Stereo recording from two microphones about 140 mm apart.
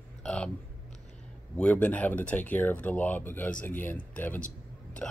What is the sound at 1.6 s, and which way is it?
Speech, 10° left (ahead or behind).